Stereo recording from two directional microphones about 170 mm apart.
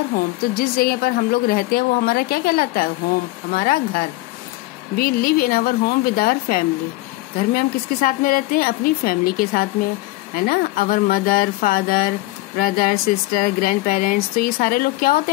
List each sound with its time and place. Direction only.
0.6 s speech: 60° left (ahead or behind)